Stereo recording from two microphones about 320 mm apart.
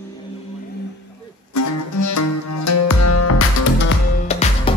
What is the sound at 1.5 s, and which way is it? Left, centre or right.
Music, left.